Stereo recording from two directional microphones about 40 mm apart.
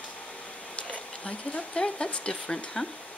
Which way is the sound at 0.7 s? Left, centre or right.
Left.